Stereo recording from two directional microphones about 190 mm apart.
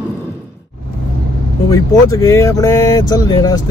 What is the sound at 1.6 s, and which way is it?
Speech, 15° left (ahead or behind).